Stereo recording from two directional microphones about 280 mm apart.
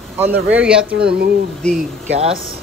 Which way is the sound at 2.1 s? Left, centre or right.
Right.